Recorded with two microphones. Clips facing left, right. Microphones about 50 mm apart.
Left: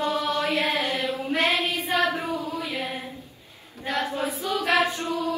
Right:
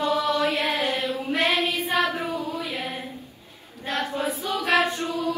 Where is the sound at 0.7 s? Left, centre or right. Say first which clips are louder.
Right 1 dB; right.